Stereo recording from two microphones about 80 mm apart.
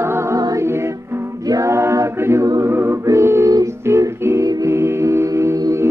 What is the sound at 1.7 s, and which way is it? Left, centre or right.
A capella, right.